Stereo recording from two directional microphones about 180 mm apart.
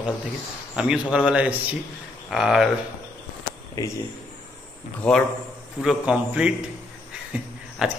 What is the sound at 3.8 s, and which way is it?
Speech, 20° left (ahead or behind).